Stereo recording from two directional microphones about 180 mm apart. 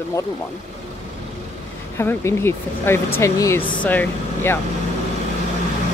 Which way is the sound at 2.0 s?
15° left (ahead or behind).